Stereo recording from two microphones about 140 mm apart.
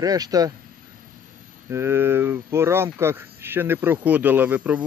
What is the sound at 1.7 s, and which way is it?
Speech, 15° right (ahead or behind).